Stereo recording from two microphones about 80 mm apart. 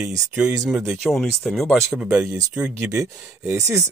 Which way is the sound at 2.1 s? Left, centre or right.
Right.